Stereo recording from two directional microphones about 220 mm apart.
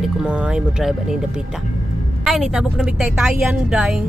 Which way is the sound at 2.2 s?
Centre (ahead or behind).